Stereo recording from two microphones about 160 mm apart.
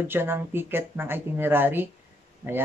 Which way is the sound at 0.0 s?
15° right (ahead or behind).